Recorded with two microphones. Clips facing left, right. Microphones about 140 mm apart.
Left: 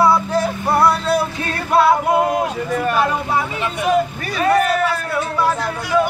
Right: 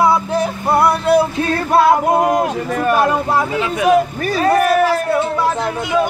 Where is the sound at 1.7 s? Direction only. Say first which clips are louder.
Right 1 dB; 40° right (ahead or behind).